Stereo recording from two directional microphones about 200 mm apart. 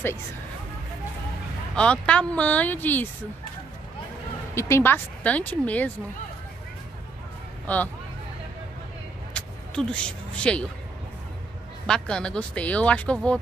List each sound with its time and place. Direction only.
1.8 s speech: 5° left (ahead or behind)
4.6 s speech: 15° left (ahead or behind)
7.6 s speech: 10° left (ahead or behind)
9.3 s a sound: 5° left (ahead or behind)
11.8 s speech: 5° left (ahead or behind)